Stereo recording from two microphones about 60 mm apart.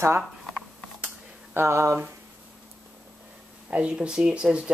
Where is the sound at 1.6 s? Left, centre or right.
Right.